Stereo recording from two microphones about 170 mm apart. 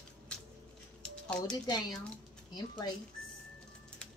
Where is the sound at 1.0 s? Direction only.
5° left (ahead or behind).